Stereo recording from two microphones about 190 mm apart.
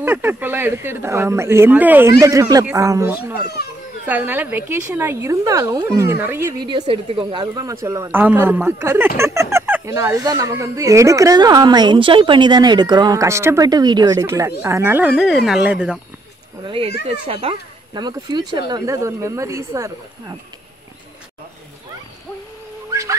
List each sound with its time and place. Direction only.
0.0 s speech: 10° right (ahead or behind)
6.7 s speech: 30° right (ahead or behind); by 16.0 s 5° right (ahead or behind)
16.6 s speech: 30° right (ahead or behind)